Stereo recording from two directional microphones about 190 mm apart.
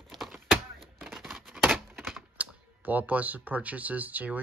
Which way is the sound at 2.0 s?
Centre (ahead or behind).